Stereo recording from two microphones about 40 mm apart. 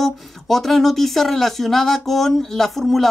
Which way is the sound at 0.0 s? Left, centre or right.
Centre.